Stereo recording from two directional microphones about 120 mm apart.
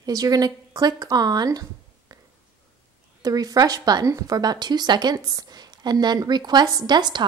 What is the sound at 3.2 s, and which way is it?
Speech, 30° right (ahead or behind).